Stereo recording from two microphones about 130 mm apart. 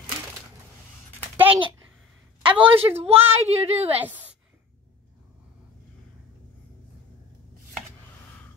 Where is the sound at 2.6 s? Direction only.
45° right (ahead or behind).